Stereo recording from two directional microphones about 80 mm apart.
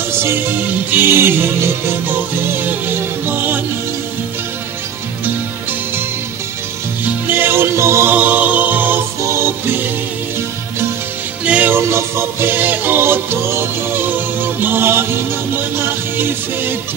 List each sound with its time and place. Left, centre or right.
0.9 s music: right
2.5 s music: right
7.2 s music: right
11.4 s music: centre
11.7 s music: right
16.2 s music: right